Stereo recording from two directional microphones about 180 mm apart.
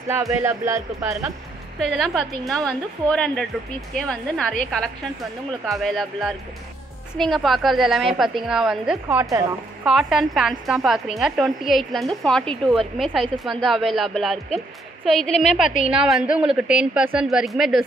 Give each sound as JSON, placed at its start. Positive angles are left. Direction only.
{"t": 0.1, "sound": "speech", "side_deg": -15}
{"t": 1.8, "sound": "a woman's voice", "side_deg": 0}
{"t": 5.7, "sound": "a woman's voice", "side_deg": 0}
{"t": 9.1, "sound": "speech", "side_deg": -20}
{"t": 9.8, "sound": "a woman's voice", "side_deg": 0}